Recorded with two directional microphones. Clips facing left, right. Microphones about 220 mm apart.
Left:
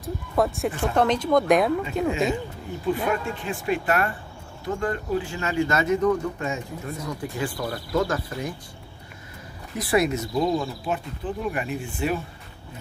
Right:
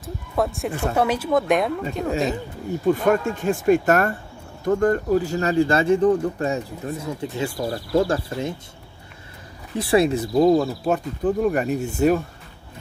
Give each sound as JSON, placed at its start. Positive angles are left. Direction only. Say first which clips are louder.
{"t": 0.0, "sound": "a sound", "louder": "even", "side_deg": 0}
{"t": 0.7, "sound": "speech", "louder": "right 1 dB", "side_deg": -10}
{"t": 2.9, "sound": "speech", "louder": "right 6 dB", "side_deg": -45}
{"t": 7.2, "sound": "speech", "louder": "right 3 dB", "side_deg": -25}
{"t": 9.8, "sound": "speech", "louder": "right 4 dB", "side_deg": -30}